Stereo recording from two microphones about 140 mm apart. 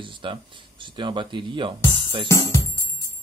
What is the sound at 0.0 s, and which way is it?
Speech, 40° right (ahead or behind).